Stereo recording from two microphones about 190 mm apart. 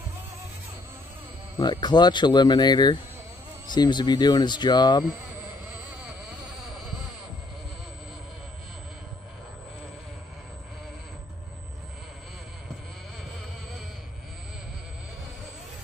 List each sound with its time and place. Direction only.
1.6 s speech: 20° left (ahead or behind)